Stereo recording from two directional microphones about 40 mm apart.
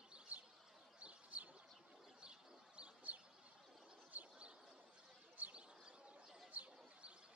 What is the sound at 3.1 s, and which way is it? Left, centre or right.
Bird, right.